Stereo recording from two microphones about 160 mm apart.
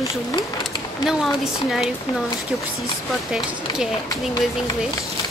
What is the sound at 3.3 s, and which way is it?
Speech, 5° right (ahead or behind).